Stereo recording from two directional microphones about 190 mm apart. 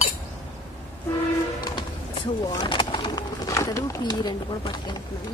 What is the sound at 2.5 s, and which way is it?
Bird, 25° left (ahead or behind).